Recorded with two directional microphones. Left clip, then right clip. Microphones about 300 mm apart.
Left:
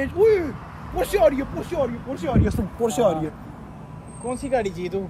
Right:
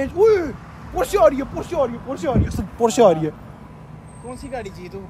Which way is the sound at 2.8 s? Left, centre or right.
Right.